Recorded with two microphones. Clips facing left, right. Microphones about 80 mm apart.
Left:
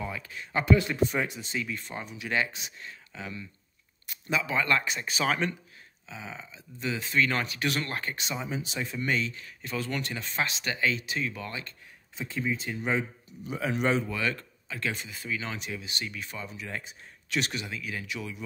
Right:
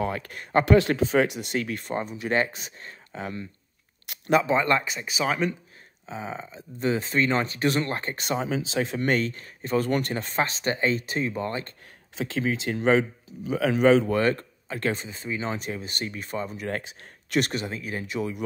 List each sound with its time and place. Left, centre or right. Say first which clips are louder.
0.0 s speech: right 7 dB; right
0.7 s speech: right 2 dB; right
2.0 s speech: right 5 dB; right
4.0 s a sound: right 9 dB; right
4.5 s speech: right 5 dB; right
4.8 s speech: right 2 dB; centre
6.0 s speech: right 7 dB; right
7.2 s speech: right 6 dB; right
8.2 s speech: right 7 dB; right
8.5 s speech: right 7 dB; right
12.2 s speech: right 5 dB; right
13.6 s speech: right 8 dB; right
14.0 s speech: right 8 dB; right